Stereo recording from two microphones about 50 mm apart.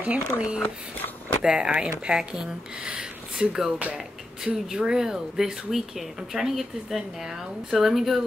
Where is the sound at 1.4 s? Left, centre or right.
Centre.